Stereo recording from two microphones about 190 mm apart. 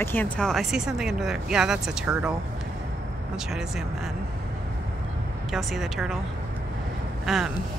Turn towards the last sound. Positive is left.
turn(degrees=0)  # may be behind; listen again after turning